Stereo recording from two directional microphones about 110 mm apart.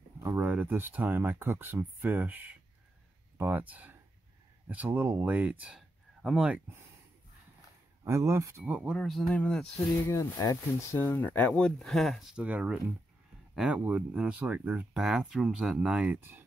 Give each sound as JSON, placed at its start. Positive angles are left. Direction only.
{"t": 0.4, "sound": "speech", "side_deg": -15}
{"t": 5.8, "sound": "a sound", "side_deg": -5}
{"t": 8.0, "sound": "speech", "side_deg": -25}
{"t": 8.6, "sound": "speech", "side_deg": -10}
{"t": 8.9, "sound": "speech", "side_deg": 5}
{"t": 10.1, "sound": "speech", "side_deg": 25}
{"t": 12.4, "sound": "speech", "side_deg": -15}